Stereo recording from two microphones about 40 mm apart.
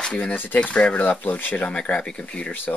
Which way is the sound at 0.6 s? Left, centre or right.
Left.